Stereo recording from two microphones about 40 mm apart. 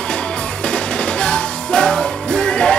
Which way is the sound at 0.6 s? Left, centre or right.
Left.